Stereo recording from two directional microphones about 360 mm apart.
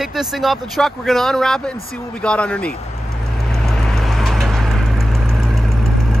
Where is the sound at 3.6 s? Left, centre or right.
Centre.